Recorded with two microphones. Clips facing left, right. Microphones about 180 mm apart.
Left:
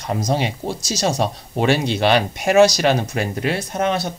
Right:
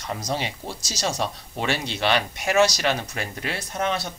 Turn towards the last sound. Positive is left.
turn(degrees=40)  # may be behind; listen again after turning